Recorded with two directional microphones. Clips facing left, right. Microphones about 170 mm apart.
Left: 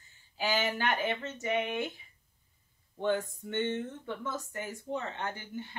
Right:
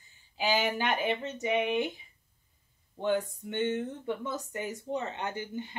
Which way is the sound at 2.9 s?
15° right (ahead or behind).